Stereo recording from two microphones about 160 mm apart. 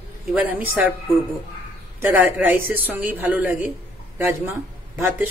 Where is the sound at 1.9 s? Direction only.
10° right (ahead or behind).